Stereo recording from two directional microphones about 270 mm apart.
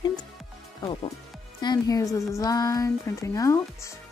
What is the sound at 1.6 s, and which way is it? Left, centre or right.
Speech, centre.